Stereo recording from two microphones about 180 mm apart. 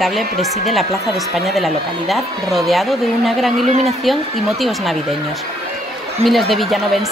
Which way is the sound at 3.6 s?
40° right (ahead or behind).